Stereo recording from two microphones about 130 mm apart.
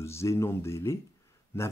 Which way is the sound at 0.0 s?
20° left (ahead or behind).